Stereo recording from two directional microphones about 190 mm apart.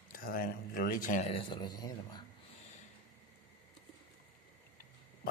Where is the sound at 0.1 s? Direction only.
50° left (ahead or behind).